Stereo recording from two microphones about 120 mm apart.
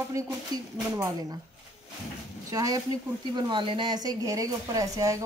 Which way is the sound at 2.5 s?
30° right (ahead or behind).